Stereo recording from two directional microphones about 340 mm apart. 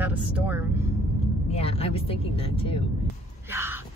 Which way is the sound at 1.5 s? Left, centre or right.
Centre.